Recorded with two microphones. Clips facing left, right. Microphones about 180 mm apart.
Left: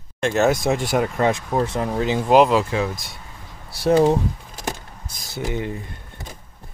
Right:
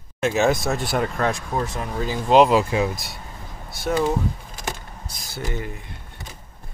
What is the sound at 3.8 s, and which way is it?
Speech, 30° left (ahead or behind).